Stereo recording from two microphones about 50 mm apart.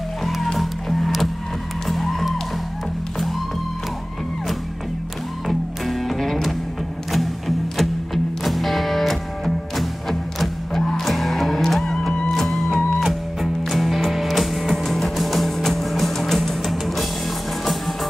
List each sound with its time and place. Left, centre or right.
0.2 s music: centre
5.5 s music: centre
12.1 s music: left
12.4 s music: centre